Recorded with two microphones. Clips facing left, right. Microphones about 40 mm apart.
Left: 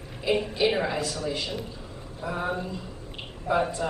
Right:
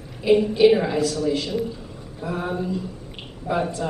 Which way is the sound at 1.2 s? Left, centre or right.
Centre.